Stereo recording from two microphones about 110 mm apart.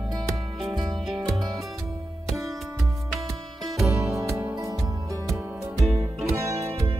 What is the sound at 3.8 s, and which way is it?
Music, 25° right (ahead or behind).